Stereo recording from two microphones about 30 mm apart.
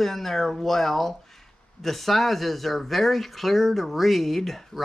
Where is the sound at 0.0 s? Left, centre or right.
Centre.